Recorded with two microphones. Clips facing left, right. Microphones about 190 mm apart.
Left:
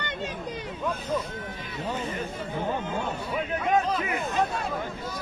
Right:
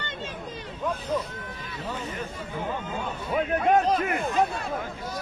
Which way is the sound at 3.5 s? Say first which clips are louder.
Right 3 dB; 55° right (ahead or behind).